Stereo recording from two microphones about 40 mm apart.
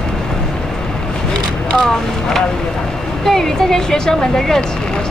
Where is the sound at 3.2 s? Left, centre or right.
Centre.